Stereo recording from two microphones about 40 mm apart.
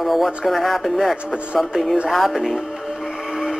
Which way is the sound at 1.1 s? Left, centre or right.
Right.